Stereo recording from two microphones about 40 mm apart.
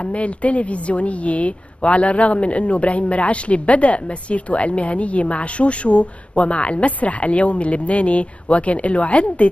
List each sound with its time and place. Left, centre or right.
0.0 s a woman's voice: left